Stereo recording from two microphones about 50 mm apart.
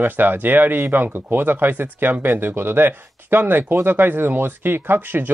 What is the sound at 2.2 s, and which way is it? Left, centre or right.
Speech, right.